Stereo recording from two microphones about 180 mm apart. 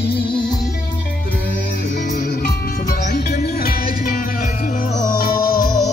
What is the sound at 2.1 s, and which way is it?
Music, 50° left (ahead or behind).